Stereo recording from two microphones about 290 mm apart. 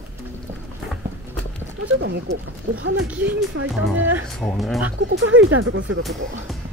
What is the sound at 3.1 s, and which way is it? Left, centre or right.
Speech, centre.